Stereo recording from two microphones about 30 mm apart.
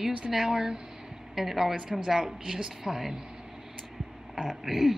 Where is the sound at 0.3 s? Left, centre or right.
Centre.